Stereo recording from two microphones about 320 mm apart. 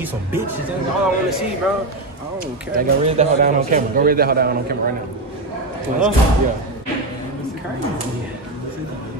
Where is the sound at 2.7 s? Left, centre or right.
Right.